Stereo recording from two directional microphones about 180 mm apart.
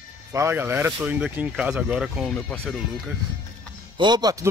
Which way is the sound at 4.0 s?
25° right (ahead or behind).